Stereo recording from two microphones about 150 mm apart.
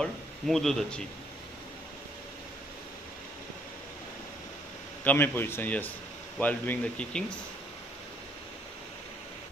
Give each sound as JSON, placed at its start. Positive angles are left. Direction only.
{"t": 0.0, "sound": "speech", "side_deg": 0}
{"t": 5.0, "sound": "a man's voice", "side_deg": 15}